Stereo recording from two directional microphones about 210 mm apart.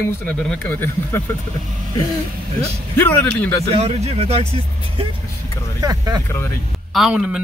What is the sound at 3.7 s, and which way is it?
Speech, 30° right (ahead or behind).